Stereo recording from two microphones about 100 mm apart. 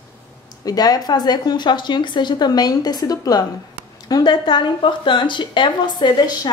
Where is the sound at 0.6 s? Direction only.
40° left (ahead or behind).